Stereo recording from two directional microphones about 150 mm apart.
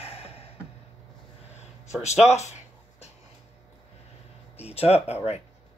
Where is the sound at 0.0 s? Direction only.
40° left (ahead or behind).